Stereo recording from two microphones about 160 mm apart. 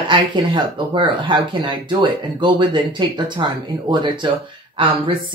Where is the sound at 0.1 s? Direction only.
30° right (ahead or behind).